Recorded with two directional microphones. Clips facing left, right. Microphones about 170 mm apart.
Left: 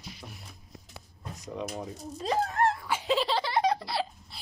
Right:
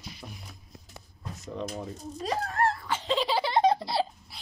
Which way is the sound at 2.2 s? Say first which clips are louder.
Left 1 dB; 20° left (ahead or behind).